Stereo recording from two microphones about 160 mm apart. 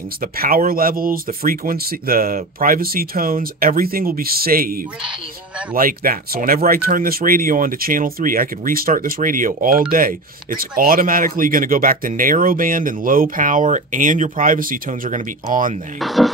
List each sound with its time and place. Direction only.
0.2 s speech: 65° right (ahead or behind)
16.0 s speech: centre (ahead or behind)